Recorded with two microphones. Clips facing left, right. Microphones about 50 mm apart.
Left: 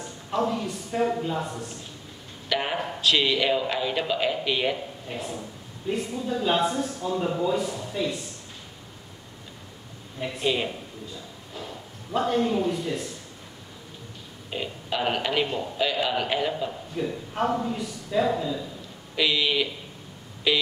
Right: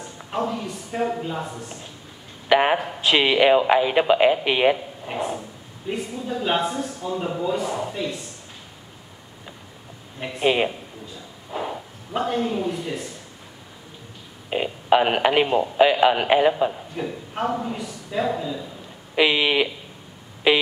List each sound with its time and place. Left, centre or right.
0.4 s a man's voice: centre
2.5 s a sound: right
3.0 s speech: right
5.9 s a man's voice: centre
10.4 s speech: right
11.5 s bow-wow: right
12.2 s a man's voice: centre
14.5 s speech: right
16.9 s a man's voice: centre
19.1 s speech: right